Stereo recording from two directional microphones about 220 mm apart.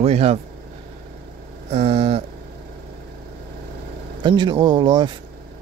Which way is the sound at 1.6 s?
30° right (ahead or behind).